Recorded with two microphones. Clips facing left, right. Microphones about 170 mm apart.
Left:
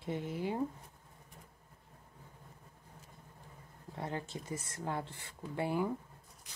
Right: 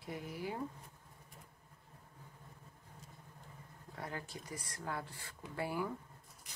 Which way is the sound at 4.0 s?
25° left (ahead or behind).